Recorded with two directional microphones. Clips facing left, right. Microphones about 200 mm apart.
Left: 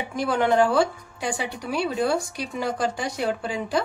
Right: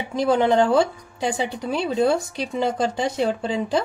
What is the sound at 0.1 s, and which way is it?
A woman's voice, 25° right (ahead or behind).